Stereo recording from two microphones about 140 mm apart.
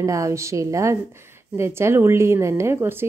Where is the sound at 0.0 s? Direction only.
20° right (ahead or behind).